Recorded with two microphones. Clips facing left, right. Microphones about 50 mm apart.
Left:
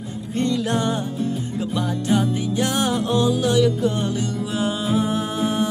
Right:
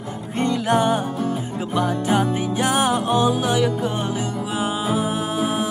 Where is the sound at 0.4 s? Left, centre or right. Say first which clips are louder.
Right 2 dB; right.